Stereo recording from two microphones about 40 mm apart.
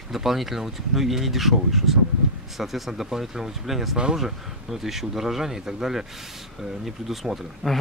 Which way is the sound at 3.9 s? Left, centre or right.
Centre.